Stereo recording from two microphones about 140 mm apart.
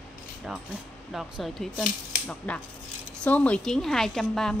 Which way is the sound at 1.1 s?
Centre (ahead or behind).